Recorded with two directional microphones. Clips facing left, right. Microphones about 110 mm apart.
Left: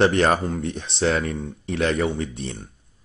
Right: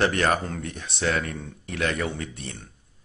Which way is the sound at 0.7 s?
25° left (ahead or behind).